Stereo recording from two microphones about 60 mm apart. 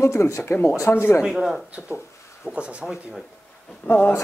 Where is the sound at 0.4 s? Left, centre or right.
Left.